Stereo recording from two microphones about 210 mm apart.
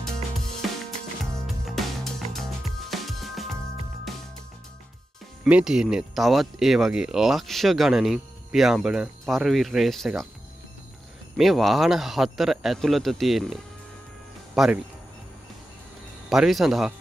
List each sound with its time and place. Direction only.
1.2 s music: centre (ahead or behind)
5.4 s speech: 5° right (ahead or behind)
11.3 s speech: centre (ahead or behind)
16.3 s speech: centre (ahead or behind)